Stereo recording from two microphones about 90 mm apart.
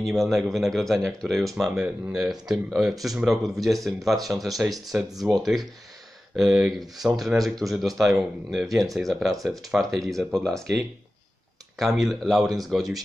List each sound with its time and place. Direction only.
0.0 s speech: centre (ahead or behind)
5.1 s speech: 45° right (ahead or behind)
5.4 s speech: centre (ahead or behind)